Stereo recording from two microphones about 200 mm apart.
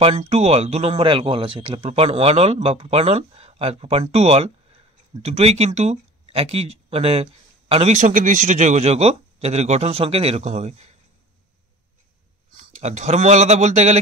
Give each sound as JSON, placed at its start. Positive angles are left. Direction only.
{"t": 0.0, "sound": "speech", "side_deg": -35}
{"t": 12.8, "sound": "speech", "side_deg": -35}